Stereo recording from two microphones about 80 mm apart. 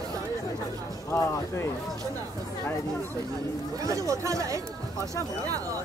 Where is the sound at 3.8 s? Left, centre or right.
Right.